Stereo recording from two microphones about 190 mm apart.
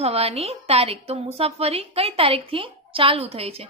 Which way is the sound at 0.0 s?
30° right (ahead or behind).